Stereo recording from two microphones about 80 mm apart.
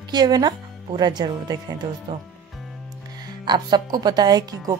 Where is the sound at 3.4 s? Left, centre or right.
Right.